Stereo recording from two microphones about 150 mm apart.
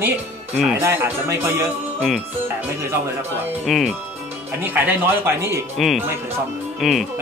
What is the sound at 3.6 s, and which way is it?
Speech, centre (ahead or behind).